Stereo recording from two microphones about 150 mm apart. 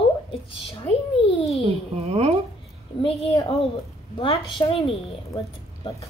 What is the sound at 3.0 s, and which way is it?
A woman's voice, 35° left (ahead or behind).